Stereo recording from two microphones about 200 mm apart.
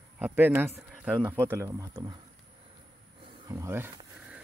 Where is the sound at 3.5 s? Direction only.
15° right (ahead or behind).